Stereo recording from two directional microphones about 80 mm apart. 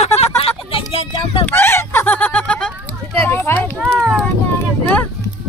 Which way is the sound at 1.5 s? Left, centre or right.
Left.